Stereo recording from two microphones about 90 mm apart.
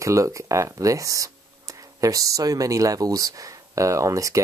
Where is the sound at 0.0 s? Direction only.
35° right (ahead or behind).